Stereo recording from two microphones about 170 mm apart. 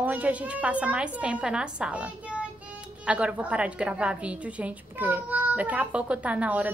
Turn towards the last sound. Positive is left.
turn(degrees=-10)  # may be behind; listen again after turning